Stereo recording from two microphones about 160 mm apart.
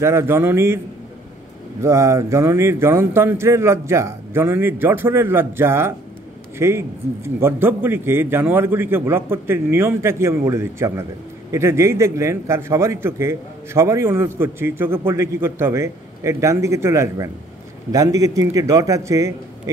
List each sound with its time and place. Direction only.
0.0 s a man's voice: 15° right (ahead or behind)
1.8 s a man's voice: 20° right (ahead or behind)